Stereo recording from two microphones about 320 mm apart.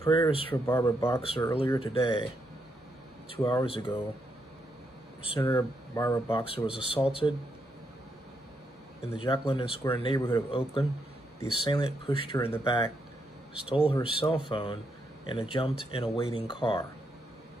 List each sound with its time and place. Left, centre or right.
0.0 s speech: centre
3.3 s speech: centre
5.4 s speech: centre
9.0 s speech: centre
13.8 s speech: centre